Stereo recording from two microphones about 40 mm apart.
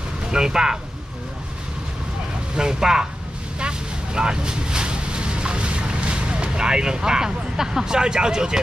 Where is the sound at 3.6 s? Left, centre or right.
Right.